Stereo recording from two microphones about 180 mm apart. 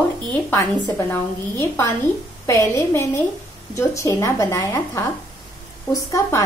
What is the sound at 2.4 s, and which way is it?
A woman's voice, 15° left (ahead or behind).